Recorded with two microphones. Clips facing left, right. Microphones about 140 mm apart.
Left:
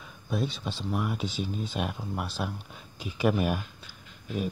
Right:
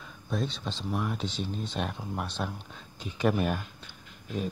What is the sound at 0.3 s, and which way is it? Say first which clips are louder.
Speech: left 1 dB; 5° left (ahead or behind).